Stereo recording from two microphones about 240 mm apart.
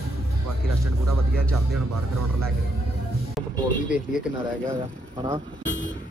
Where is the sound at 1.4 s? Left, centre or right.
Centre.